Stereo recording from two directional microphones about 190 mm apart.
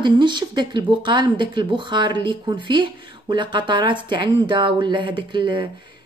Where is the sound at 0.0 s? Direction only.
25° right (ahead or behind).